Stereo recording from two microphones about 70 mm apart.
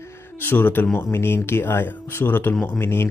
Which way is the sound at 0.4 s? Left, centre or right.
Left.